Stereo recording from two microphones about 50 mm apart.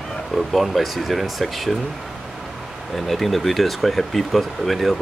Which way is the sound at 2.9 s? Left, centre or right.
Centre.